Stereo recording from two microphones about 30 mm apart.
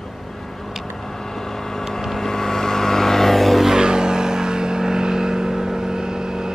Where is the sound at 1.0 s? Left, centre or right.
Centre.